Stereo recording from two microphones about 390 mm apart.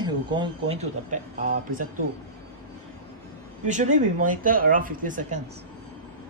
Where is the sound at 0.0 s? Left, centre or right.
Centre.